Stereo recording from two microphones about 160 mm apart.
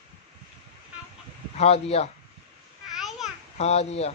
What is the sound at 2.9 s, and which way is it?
Babbling, centre (ahead or behind).